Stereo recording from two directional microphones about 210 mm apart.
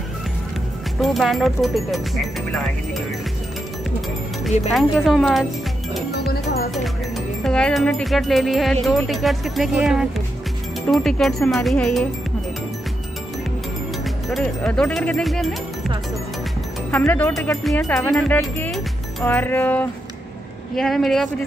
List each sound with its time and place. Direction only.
0.9 s speech: centre (ahead or behind)
4.7 s speech: centre (ahead or behind)
6.1 s music: 50° left (ahead or behind)
7.4 s speech: 5° left (ahead or behind)
14.3 s speech: 5° left (ahead or behind)
16.9 s speech: 10° left (ahead or behind)